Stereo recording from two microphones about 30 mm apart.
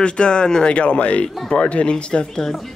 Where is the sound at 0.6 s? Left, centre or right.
Left.